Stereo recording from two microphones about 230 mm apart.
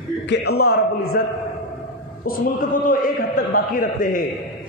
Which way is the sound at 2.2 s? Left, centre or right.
Left.